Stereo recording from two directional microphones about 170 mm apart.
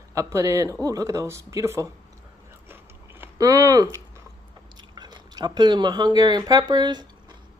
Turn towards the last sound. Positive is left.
turn(degrees=-25)  # may be behind; listen again after turning